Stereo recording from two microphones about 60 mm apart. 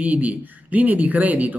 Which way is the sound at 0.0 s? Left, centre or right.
Right.